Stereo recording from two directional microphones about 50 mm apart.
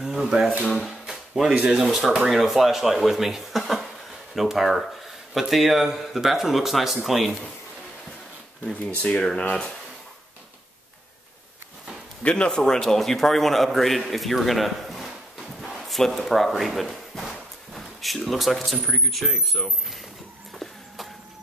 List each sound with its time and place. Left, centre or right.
0.0 s speech: centre
0.8 s a sound: centre
1.5 s speech: centre
9.0 s speech: centre
12.2 s a man's voice: left
12.4 s speech: centre